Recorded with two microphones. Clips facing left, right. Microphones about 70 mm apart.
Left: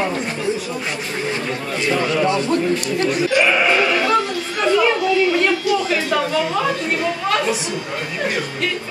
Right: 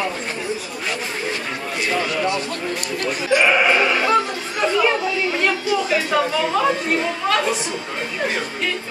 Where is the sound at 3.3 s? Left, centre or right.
Right.